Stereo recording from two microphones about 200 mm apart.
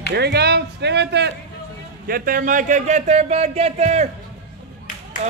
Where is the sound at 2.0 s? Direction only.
45° right (ahead or behind).